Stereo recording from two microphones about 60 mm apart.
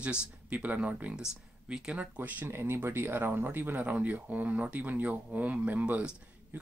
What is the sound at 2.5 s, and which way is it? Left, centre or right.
Speech, right.